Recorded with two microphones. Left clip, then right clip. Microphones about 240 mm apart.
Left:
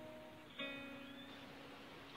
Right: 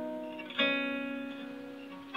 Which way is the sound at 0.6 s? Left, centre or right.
Right.